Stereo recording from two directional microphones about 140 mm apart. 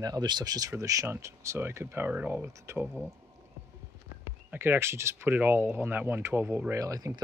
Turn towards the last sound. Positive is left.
turn(degrees=-25)  # may be behind; listen again after turning